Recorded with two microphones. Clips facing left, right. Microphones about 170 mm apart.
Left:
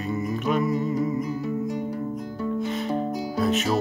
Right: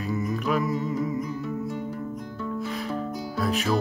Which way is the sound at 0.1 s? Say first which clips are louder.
Left 1 dB; centre (ahead or behind).